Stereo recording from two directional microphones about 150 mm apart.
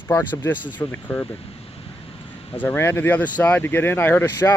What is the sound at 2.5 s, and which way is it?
Speech, 10° left (ahead or behind).